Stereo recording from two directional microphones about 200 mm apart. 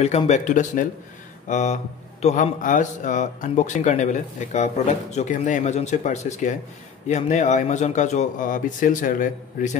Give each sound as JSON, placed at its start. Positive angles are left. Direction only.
{"t": 0.0, "sound": "speech", "side_deg": 35}